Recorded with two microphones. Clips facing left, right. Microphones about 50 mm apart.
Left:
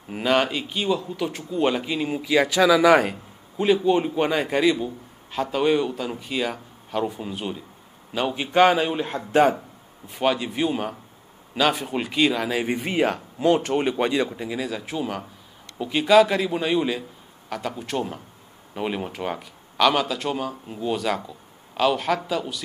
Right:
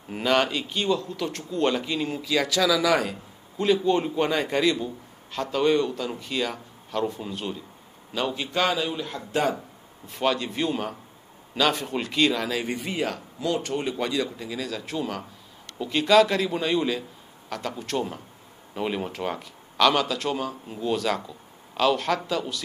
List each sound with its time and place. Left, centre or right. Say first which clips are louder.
0.1 s a man's voice: left 1 dB; centre; by 3.2 s left
3.5 s a man's voice: left 2 dB; centre; by 9.6 s left
10.0 s a man's voice: left 2 dB; centre
12.8 s a man's voice: left 6 dB; left; by 22.6 s centre